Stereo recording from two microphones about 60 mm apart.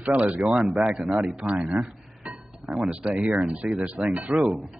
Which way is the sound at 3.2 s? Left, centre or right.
Right.